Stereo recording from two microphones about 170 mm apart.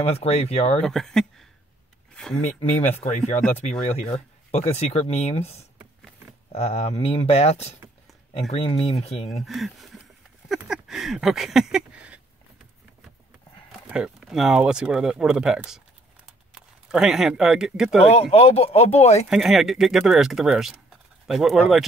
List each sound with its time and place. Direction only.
0.0 s speech: 35° left (ahead or behind)
0.8 s speech: 5° left (ahead or behind)
3.8 s speech: 40° left (ahead or behind)
9.4 s speech: centre (ahead or behind)
10.5 s a sound: centre (ahead or behind)
13.7 s speech: 5° right (ahead or behind)
18.0 s speech: 35° left (ahead or behind)
19.2 s speech: centre (ahead or behind)